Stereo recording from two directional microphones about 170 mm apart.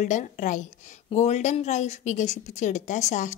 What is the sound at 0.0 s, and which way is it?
A woman's voice, 45° left (ahead or behind).